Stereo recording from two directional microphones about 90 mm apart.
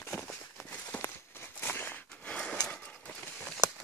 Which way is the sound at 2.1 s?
10° left (ahead or behind).